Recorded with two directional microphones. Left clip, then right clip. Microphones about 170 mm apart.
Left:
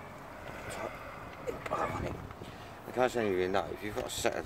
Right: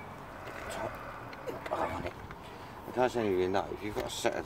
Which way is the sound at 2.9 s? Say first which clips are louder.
Even; 10° left (ahead or behind).